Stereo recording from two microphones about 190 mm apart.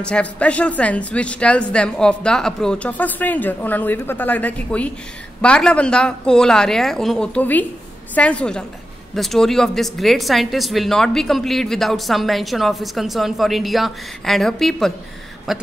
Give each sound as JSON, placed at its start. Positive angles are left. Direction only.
{"t": 0.0, "sound": "speech", "side_deg": 5}